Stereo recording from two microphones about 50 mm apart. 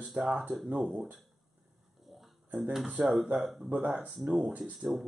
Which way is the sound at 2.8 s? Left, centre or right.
Centre.